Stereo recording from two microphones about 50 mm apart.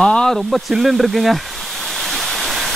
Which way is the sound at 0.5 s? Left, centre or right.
Centre.